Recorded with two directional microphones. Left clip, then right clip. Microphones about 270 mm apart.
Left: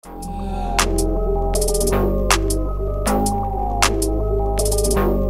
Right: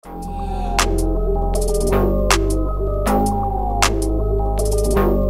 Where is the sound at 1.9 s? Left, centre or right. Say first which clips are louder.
Right 4 dB; centre.